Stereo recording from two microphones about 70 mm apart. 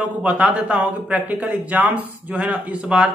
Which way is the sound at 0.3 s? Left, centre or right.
Centre.